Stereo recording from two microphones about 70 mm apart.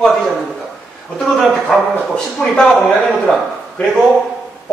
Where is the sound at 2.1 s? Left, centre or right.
Centre.